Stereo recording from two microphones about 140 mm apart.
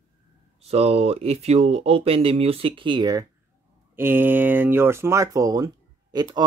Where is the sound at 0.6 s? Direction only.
50° right (ahead or behind); by 3.3 s 30° right (ahead or behind).